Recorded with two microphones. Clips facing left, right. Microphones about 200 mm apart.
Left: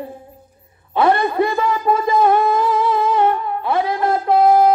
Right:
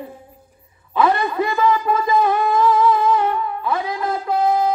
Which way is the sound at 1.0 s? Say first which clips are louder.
Left 3 dB; 35° left (ahead or behind).